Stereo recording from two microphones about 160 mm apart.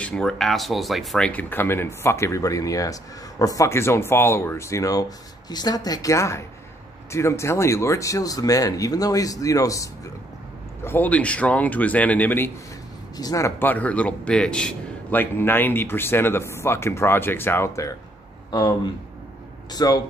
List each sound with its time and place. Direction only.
0.0 s speech: 5° left (ahead or behind); by 20.0 s 25° left (ahead or behind)